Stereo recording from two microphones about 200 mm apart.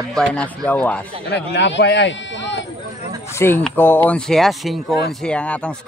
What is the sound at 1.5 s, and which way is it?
Speech, 60° left (ahead or behind).